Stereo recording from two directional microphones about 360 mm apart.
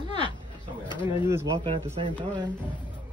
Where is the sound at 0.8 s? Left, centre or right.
Centre.